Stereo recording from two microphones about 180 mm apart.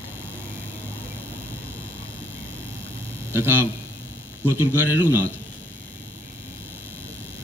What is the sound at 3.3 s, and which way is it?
Speech, 15° right (ahead or behind).